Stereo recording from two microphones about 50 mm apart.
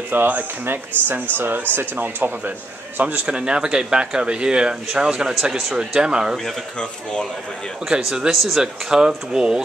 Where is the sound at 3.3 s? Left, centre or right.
Centre.